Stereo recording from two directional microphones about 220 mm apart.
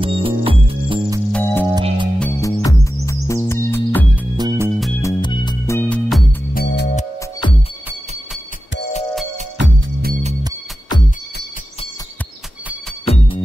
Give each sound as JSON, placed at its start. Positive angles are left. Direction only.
{"t": 0.0, "sound": "music", "side_deg": -25}
{"t": 1.3, "sound": "music", "side_deg": 10}
{"t": 1.8, "sound": "music", "side_deg": -20}
{"t": 2.1, "sound": "music", "side_deg": 10}
{"t": 4.4, "sound": "music", "side_deg": -15}
{"t": 5.0, "sound": "music", "side_deg": 20}
{"t": 6.5, "sound": "music", "side_deg": 50}
{"t": 9.6, "sound": "music", "side_deg": -55}
{"t": 13.0, "sound": "music", "side_deg": 25}